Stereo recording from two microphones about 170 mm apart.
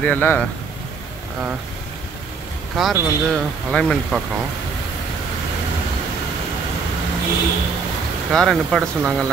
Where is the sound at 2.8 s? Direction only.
Centre (ahead or behind).